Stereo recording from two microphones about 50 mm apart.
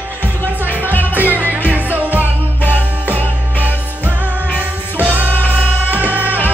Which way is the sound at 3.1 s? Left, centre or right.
Left.